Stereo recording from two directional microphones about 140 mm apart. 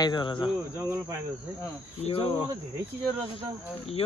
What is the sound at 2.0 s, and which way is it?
Speech, 45° left (ahead or behind).